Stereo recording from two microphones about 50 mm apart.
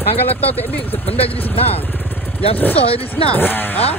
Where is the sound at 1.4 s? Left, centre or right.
Left.